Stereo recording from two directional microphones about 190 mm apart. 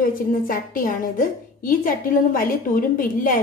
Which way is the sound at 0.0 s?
50° left (ahead or behind).